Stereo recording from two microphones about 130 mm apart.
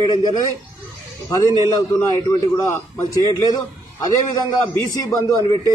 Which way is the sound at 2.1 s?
25° left (ahead or behind).